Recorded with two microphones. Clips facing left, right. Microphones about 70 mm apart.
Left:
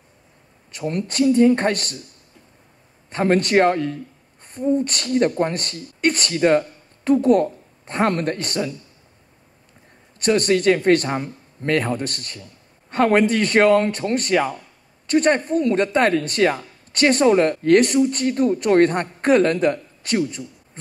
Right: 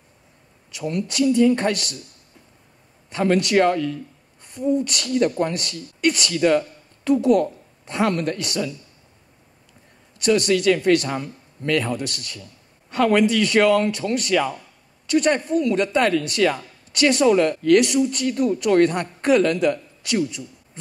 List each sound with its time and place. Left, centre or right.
0.7 s speech: left
3.1 s speech: left
10.1 s speech: left